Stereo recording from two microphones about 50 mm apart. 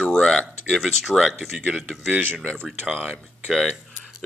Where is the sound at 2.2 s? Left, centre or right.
Centre.